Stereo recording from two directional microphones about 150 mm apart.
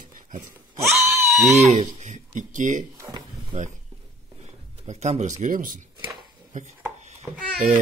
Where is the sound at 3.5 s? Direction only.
50° right (ahead or behind).